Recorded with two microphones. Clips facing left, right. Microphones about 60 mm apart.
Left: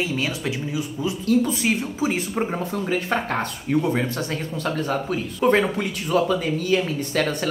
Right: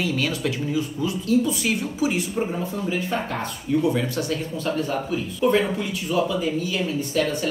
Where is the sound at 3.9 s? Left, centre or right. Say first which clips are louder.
Even; left.